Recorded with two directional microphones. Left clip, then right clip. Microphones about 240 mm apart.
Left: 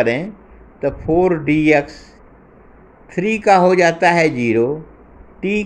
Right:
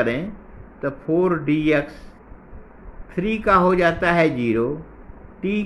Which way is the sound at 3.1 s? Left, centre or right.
Centre.